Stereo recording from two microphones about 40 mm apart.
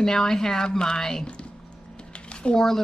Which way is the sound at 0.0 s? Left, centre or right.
Centre.